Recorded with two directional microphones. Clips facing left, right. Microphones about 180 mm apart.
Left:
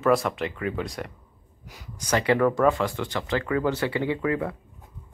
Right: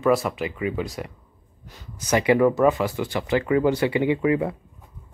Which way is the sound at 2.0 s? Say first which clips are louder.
Right 3 dB; 10° right (ahead or behind).